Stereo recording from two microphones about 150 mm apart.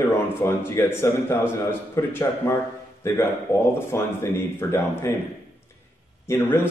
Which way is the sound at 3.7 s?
15° left (ahead or behind).